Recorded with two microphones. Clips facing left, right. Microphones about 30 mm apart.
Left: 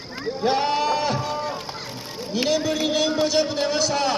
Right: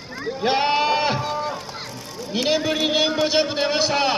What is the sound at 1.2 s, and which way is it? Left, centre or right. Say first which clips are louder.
Run: right 1 dB; centre.